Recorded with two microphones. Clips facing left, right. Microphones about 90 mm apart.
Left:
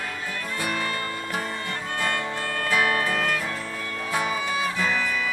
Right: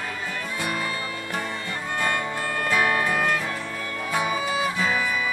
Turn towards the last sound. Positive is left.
turn(degrees=-10)  # may be behind; listen again after turning